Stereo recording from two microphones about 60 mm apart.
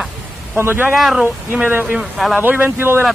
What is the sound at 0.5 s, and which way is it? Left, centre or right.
Speech, right.